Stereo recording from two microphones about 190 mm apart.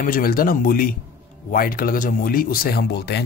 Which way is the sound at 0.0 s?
50° left (ahead or behind).